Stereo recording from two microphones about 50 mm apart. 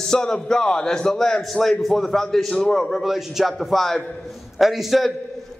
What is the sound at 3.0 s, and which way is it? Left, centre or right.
A man's voice, centre.